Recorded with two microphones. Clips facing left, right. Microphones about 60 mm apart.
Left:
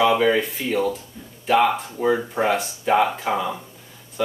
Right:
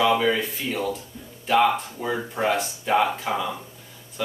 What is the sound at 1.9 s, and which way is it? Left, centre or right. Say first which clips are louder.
Speech: left 6 dB; centre.